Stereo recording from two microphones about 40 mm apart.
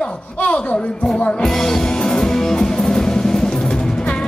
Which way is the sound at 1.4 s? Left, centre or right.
Centre.